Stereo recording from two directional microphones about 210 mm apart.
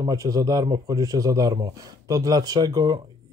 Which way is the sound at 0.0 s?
15° right (ahead or behind).